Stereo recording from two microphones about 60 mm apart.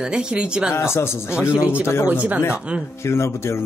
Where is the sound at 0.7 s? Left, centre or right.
Left.